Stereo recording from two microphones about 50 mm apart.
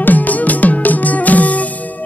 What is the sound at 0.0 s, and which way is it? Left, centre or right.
Music, left.